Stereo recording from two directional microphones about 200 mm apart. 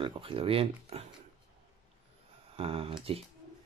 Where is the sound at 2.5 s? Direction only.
30° right (ahead or behind).